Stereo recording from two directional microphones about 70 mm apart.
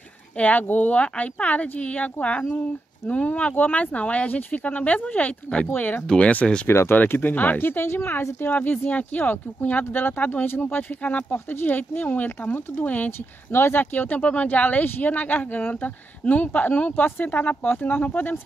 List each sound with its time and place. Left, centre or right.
0.4 s speech: left
6.0 s speech: centre
6.7 s speech: left
7.0 s speech: left
13.5 s speech: left